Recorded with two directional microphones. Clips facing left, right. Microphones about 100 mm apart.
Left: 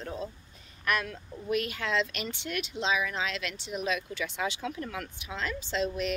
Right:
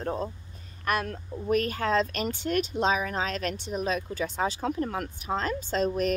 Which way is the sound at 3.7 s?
35° right (ahead or behind).